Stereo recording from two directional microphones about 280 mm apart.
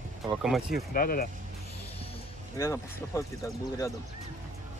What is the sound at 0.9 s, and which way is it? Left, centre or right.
Speech, left.